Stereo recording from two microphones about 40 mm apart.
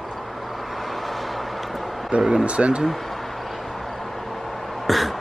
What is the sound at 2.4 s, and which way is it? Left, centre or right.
Speech, right.